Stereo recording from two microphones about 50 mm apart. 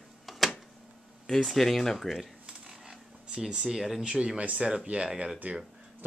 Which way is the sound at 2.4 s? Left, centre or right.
Centre.